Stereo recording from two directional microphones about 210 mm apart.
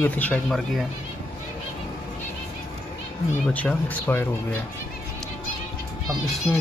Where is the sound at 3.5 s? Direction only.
5° left (ahead or behind).